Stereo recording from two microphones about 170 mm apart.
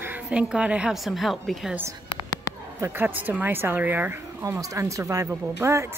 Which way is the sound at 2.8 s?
10° right (ahead or behind).